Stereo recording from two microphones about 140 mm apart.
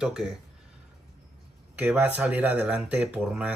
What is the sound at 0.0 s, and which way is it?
Speech, 5° right (ahead or behind).